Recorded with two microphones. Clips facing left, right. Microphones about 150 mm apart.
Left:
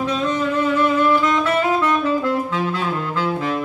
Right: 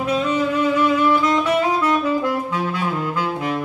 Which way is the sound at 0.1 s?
10° right (ahead or behind).